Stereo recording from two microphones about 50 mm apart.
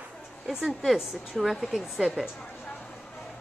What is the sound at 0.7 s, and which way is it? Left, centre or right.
Speech, centre.